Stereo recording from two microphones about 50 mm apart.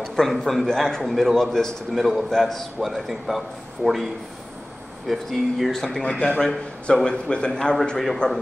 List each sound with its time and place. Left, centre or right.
0.3 s a man's voice: centre
0.7 s a man's voice: centre
6.0 s a man's voice: left
6.4 s a man's voice: centre